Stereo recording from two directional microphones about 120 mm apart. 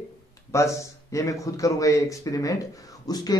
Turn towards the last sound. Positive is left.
turn(degrees=35)  # may be behind; listen again after turning